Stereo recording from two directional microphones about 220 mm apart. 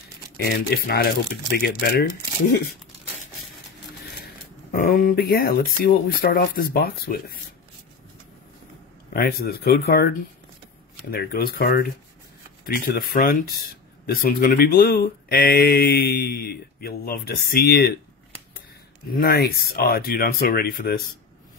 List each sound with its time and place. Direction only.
0.4 s speech: 45° left (ahead or behind)
4.7 s speech: 40° left (ahead or behind)
9.1 s speech: 40° left (ahead or behind)
19.1 s speech: 45° left (ahead or behind)